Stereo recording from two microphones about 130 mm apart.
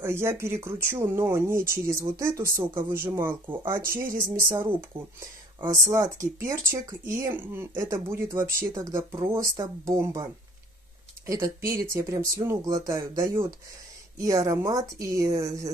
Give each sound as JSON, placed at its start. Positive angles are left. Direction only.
{"t": 0.0, "sound": "speech", "side_deg": -20}